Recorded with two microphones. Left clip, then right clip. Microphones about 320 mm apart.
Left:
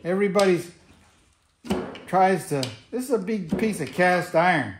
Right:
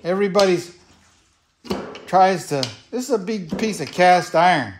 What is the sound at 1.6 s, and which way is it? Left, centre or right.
Speech, right.